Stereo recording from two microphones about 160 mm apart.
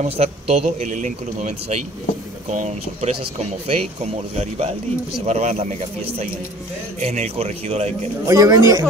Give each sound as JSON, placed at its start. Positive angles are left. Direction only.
{"t": 0.0, "sound": "a man's voice", "side_deg": -40}
{"t": 8.3, "sound": "speech", "side_deg": -20}